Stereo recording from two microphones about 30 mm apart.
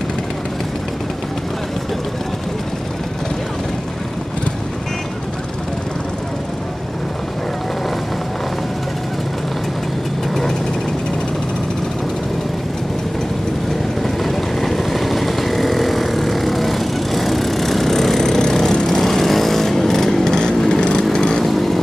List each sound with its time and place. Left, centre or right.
14.0 s vehicle: centre
18.9 s vehicle: centre
20.2 s vehicle: left
20.5 s lawn mower: left
21.4 s vehicle: centre